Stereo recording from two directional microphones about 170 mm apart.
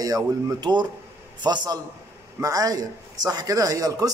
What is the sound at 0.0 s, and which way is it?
A man's voice, 20° right (ahead or behind).